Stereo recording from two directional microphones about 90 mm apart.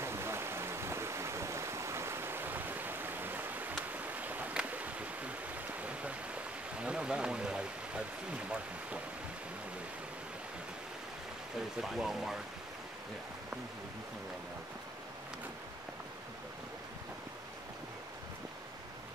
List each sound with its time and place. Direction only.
0.0 s stream: 30° right (ahead or behind); by 8.0 s 10° right (ahead or behind)
11.8 s speech: 5° right (ahead or behind)